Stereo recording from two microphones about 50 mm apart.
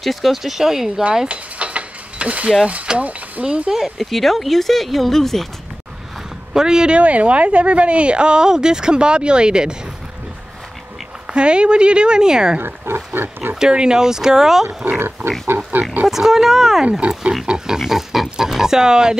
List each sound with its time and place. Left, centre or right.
0.0 s speech: centre
1.3 s a sound: right
2.7 s speech: right
3.4 s speech: centre
3.8 s speech: centre
6.5 s a woman's voice: centre
11.2 s a woman's voice: centre
12.5 s speech: right
13.6 s speech: centre
15.4 s speech: right
16.1 s speech: centre
17.0 s a woman's voice: right
17.5 s speech: centre